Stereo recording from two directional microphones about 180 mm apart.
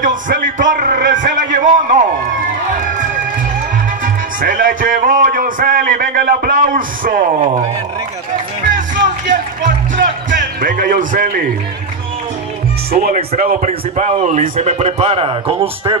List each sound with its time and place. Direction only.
0.0 s a man's voice: 50° right (ahead or behind)
4.0 s music: 50° right (ahead or behind)
8.7 s music: 45° right (ahead or behind)
12.9 s a man's voice: 55° right (ahead or behind); by 16.0 s 30° right (ahead or behind)